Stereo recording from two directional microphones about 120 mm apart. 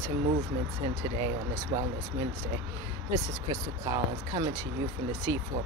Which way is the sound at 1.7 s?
35° right (ahead or behind).